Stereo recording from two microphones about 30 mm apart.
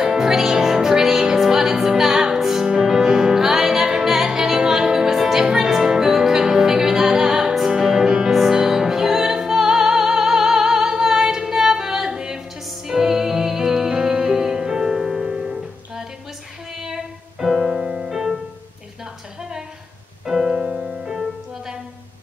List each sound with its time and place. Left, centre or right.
0.0 s music: centre
5.4 s music: right
20.2 s music: centre